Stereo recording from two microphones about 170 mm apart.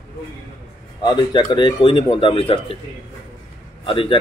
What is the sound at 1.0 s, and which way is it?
Speech, 25° left (ahead or behind).